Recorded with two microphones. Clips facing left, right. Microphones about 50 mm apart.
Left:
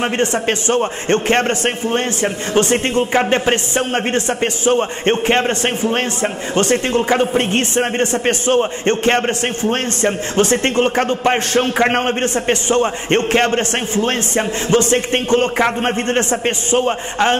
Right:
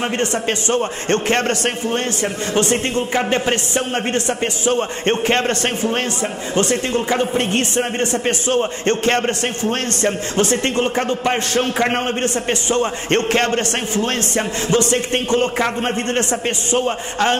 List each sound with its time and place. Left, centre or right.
0.0 s a man's voice: left
3.2 s a man's voice: left